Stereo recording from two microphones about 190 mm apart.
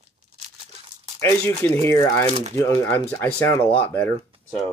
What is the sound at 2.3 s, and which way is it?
Speech, 35° right (ahead or behind).